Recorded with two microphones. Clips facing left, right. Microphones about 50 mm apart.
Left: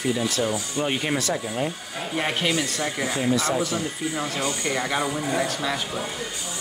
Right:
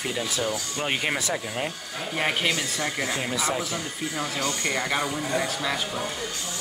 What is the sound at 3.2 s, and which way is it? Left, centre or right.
Speech, centre.